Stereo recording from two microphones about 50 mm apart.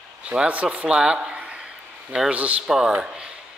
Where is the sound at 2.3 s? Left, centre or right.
Right.